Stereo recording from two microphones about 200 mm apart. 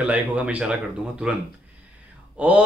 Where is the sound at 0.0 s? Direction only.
5° right (ahead or behind).